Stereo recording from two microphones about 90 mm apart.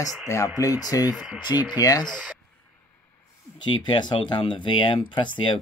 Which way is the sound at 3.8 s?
55° left (ahead or behind).